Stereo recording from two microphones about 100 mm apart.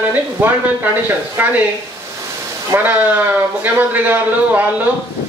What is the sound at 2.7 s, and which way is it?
Speech, 15° right (ahead or behind).